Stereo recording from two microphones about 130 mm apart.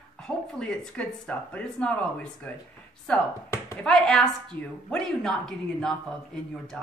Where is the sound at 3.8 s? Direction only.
5° left (ahead or behind).